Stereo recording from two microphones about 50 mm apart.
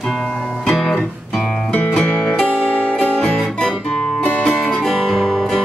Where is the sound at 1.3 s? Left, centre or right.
Centre.